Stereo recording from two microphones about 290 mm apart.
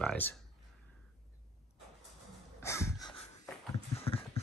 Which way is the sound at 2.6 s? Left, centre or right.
Centre.